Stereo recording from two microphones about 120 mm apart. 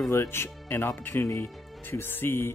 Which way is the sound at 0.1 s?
20° left (ahead or behind).